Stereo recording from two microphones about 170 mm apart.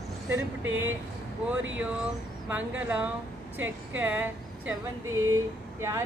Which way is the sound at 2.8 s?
10° right (ahead or behind).